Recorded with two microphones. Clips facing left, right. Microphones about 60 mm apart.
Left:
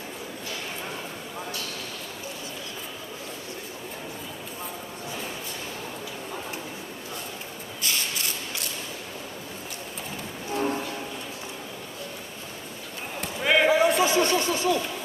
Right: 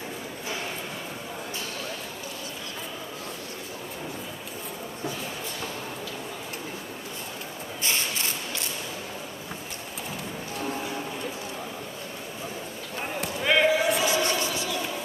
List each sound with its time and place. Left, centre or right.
10.5 s train: left
13.2 s basketball bounce: centre
13.7 s a sound: left